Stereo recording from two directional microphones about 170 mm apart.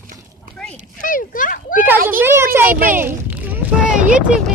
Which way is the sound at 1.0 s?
55° left (ahead or behind).